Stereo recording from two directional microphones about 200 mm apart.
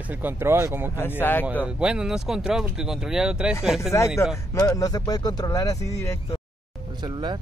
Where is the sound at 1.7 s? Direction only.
5° right (ahead or behind).